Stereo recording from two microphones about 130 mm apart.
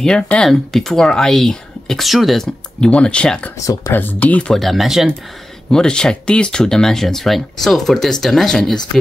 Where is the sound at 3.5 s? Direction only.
25° left (ahead or behind).